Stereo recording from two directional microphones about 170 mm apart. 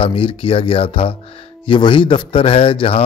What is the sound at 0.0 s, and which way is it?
Speech, 30° left (ahead or behind).